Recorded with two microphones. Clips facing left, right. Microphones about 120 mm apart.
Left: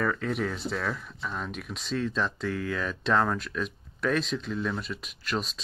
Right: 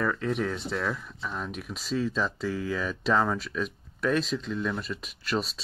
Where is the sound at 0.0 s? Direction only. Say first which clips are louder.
Right 1 dB; centre (ahead or behind).